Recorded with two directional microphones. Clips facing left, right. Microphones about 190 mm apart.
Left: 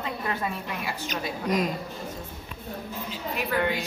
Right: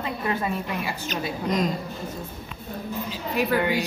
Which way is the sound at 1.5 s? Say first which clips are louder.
Right 1 dB; 5° left (ahead or behind).